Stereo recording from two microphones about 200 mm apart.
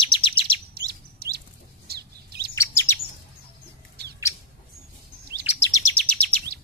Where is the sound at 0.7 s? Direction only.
50° right (ahead or behind).